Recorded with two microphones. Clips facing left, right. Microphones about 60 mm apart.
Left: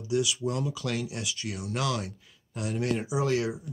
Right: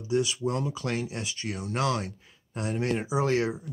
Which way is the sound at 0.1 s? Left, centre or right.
Right.